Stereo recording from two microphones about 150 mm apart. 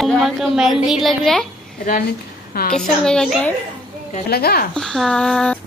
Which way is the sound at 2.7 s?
5° left (ahead or behind).